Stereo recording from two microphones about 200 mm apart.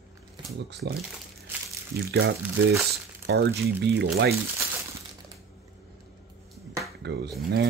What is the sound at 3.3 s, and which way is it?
Speech, 55° right (ahead or behind).